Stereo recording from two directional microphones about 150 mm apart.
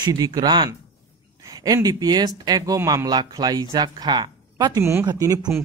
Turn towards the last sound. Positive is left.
turn(degrees=-20)  # may be behind; listen again after turning